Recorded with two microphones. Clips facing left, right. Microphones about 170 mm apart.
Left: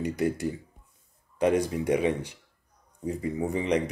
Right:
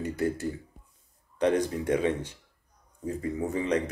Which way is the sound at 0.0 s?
15° left (ahead or behind).